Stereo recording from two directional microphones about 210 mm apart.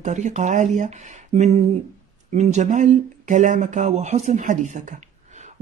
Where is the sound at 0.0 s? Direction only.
35° right (ahead or behind).